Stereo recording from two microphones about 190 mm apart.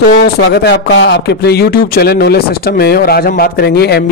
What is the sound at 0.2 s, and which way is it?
Speech, 60° left (ahead or behind).